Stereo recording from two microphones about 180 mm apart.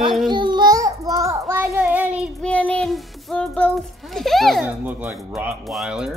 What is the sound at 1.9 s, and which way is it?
Child singing, 5° right (ahead or behind).